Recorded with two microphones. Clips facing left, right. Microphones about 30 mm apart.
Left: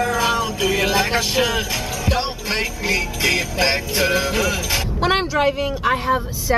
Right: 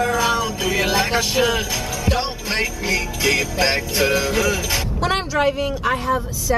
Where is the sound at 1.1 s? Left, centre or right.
Centre.